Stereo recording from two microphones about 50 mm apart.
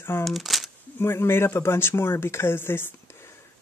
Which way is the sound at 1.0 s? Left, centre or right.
Left.